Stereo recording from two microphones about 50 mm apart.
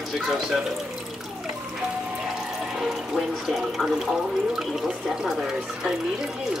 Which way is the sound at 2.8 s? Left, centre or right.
Centre.